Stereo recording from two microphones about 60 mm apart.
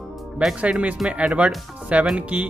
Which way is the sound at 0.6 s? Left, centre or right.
Right.